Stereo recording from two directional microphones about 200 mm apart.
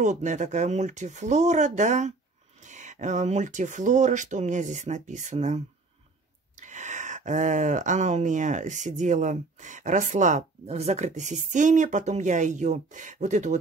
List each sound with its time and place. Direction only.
0.0 s speech: 35° right (ahead or behind)